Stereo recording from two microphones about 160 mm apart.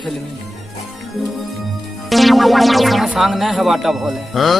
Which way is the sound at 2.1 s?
Centre (ahead or behind).